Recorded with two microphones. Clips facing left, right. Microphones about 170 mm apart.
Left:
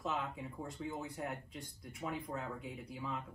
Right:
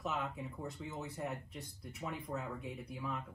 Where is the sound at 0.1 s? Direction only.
Centre (ahead or behind).